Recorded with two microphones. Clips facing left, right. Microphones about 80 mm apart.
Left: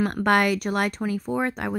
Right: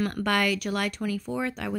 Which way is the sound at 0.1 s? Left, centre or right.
Left.